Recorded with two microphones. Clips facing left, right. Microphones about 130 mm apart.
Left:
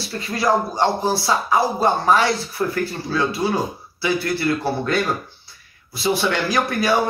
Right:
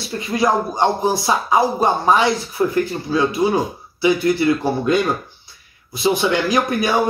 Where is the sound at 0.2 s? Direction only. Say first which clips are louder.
Right 2 dB; 20° right (ahead or behind).